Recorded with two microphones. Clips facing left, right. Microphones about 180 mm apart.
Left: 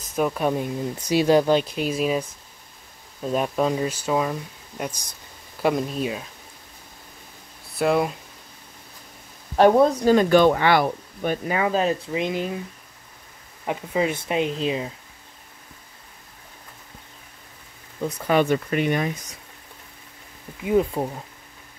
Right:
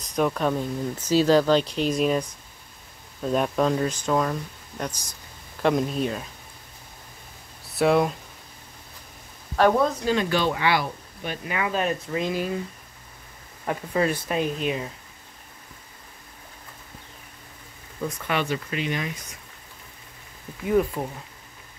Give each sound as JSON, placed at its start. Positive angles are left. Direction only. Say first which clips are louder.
{"t": 0.0, "sound": "speech", "louder": "left 1 dB", "side_deg": 5}
{"t": 7.7, "sound": "speech", "louder": "right 1 dB", "side_deg": 0}
{"t": 9.6, "sound": "speech", "louder": "left 4 dB", "side_deg": 25}
{"t": 9.8, "sound": "speech", "louder": "left 6 dB", "side_deg": 45}
{"t": 11.4, "sound": "speech", "louder": "left 3 dB", "side_deg": 35}
{"t": 13.7, "sound": "speech", "louder": "even", "side_deg": 15}
{"t": 18.0, "sound": "speech", "louder": "left 6 dB", "side_deg": 40}
{"t": 21.0, "sound": "speech", "louder": "left 4 dB", "side_deg": 30}